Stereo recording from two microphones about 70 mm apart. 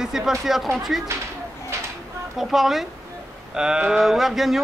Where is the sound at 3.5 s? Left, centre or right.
Centre.